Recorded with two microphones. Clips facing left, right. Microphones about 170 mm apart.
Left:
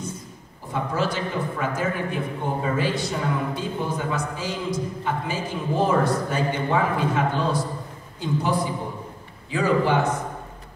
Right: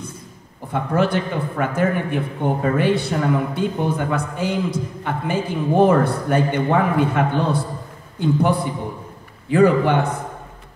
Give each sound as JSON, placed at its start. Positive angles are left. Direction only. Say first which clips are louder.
{"t": 0.7, "sound": "a man's voice", "louder": "right 5 dB", "side_deg": -60}